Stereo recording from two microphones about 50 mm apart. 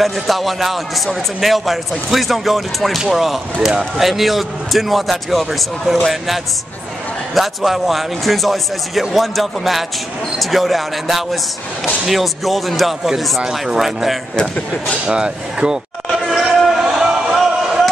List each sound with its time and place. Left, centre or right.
0.0 s a man's voice: centre
14.3 s speech: centre
15.0 s speech: centre
16.1 s a sound: centre